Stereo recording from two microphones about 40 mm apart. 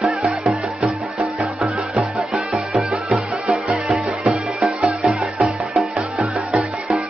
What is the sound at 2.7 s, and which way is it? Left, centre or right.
Music, right.